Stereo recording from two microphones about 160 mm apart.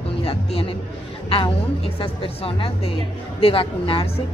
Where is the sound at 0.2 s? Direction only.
35° left (ahead or behind).